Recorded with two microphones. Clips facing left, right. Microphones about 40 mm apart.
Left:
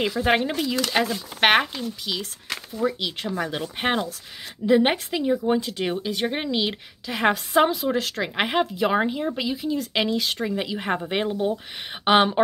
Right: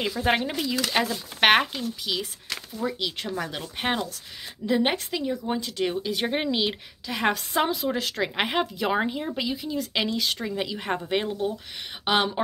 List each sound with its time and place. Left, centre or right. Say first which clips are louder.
0.2 s a woman's voice: left 2 dB; centre
6.1 s a woman's voice: left 1 dB; centre; by 12.4 s left